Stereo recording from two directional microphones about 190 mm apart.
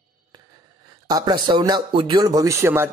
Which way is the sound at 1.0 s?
20° right (ahead or behind).